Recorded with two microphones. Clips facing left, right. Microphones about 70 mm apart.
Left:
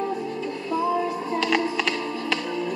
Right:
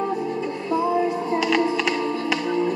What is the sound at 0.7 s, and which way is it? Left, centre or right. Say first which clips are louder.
Music: right 3 dB; centre.